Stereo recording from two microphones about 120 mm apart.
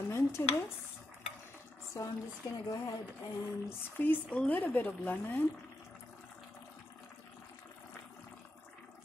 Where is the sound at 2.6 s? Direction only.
30° left (ahead or behind).